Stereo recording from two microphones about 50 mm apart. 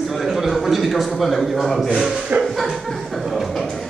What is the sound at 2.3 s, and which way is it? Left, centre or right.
Music, right.